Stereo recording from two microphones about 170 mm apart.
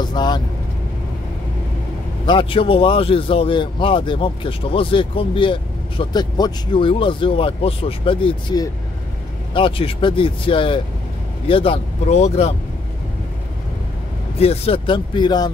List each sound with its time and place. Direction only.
0.0 s speech: 25° left (ahead or behind)
2.2 s a man's voice: 30° left (ahead or behind)
14.4 s speech: 35° left (ahead or behind)